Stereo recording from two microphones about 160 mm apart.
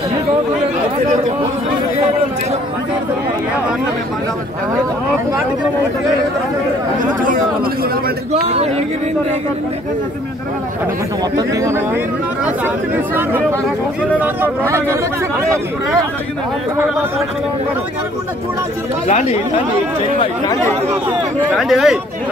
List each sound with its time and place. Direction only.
8.3 s speech: 40° right (ahead or behind)
11.3 s speech: 20° right (ahead or behind)
21.5 s speech: centre (ahead or behind)